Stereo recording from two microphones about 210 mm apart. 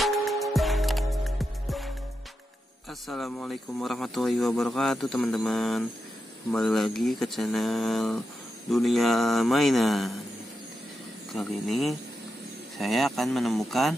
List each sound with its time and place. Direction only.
0.0 s music: centre (ahead or behind)
2.9 s speech: centre (ahead or behind)
11.3 s speech: centre (ahead or behind)